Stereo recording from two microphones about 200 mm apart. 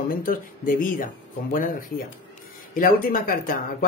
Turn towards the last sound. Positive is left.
turn(degrees=45)  # may be behind; listen again after turning